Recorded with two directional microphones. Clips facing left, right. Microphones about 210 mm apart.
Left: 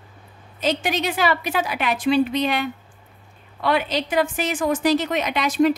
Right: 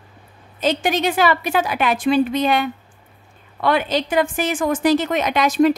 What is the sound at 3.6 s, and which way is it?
A woman's voice, 50° right (ahead or behind).